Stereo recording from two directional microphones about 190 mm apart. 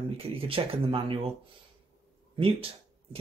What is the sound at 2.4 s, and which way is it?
Speech, 30° right (ahead or behind).